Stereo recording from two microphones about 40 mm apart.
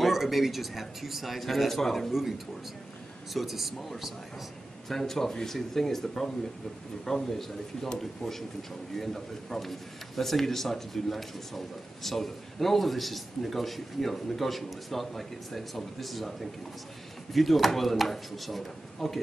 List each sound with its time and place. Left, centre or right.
0.0 s a man's voice: centre
4.8 s a man's voice: centre